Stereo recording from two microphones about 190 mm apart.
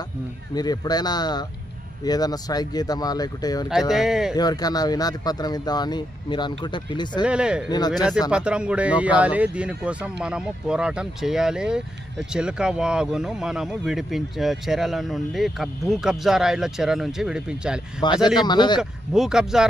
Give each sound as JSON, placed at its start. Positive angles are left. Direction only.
{"t": 0.6, "sound": "speech", "side_deg": 20}
{"t": 3.9, "sound": "speech", "side_deg": 0}
{"t": 4.4, "sound": "speech", "side_deg": 20}
{"t": 7.2, "sound": "speech", "side_deg": -5}
{"t": 18.0, "sound": "speech", "side_deg": 25}
{"t": 18.8, "sound": "speech", "side_deg": -5}